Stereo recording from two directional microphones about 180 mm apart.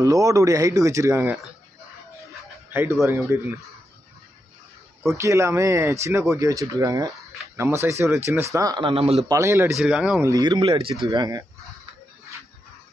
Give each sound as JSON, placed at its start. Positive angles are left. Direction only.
{"t": 0.0, "sound": "speech", "side_deg": -20}
{"t": 2.7, "sound": "speech", "side_deg": -10}
{"t": 5.0, "sound": "speech", "side_deg": -15}
{"t": 9.3, "sound": "speech", "side_deg": -15}
{"t": 10.2, "sound": "speech", "side_deg": -20}
{"t": 11.1, "sound": "speech", "side_deg": -20}